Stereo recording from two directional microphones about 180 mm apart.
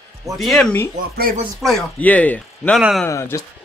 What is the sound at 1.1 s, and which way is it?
Speech, 55° right (ahead or behind).